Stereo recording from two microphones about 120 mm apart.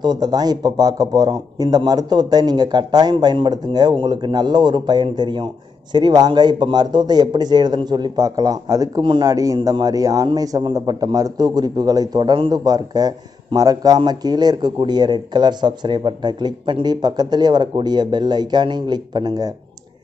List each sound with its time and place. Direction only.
0.0 s a man's voice: 35° right (ahead or behind)
9.0 s speech: 40° right (ahead or behind)
9.3 s a man's voice: 30° right (ahead or behind)